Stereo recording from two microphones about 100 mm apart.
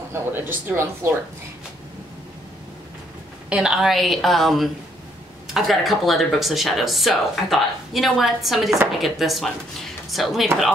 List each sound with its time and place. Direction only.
0.1 s speech: 20° right (ahead or behind)
3.4 s speech: 5° right (ahead or behind)